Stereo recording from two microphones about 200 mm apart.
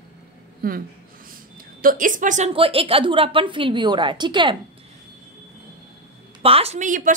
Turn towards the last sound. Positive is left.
turn(degrees=-40)  # may be behind; listen again after turning